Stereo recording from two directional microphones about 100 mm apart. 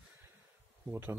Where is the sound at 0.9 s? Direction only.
25° right (ahead or behind).